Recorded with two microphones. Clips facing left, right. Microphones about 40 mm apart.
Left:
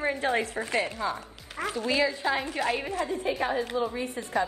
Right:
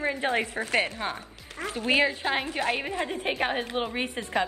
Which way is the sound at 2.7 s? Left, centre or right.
Right.